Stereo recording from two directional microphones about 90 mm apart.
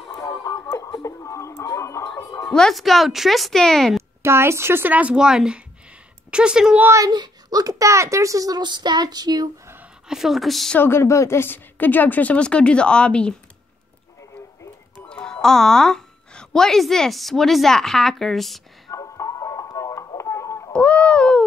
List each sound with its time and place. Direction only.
0.1 s a sound: 45° left (ahead or behind)
2.4 s speech: 5° left (ahead or behind)
4.2 s a woman's voice: 30° right (ahead or behind); by 6.8 s 10° right (ahead or behind)
7.1 s a child's voice: 45° right (ahead or behind)
10.0 s speech: 5° right (ahead or behind)
10.8 s a woman's voice: 30° left (ahead or behind); by 13.3 s 10° left (ahead or behind)
15.0 s speech: 10° left (ahead or behind)
18.9 s music: 40° left (ahead or behind)
20.7 s a sound: 15° left (ahead or behind)